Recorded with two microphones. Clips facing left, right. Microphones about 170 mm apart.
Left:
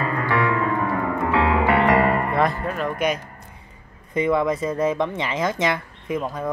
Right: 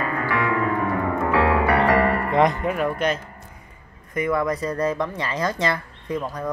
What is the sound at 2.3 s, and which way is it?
Speech, 20° right (ahead or behind).